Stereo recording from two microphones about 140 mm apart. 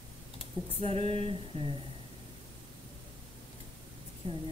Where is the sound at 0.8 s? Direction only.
45° right (ahead or behind).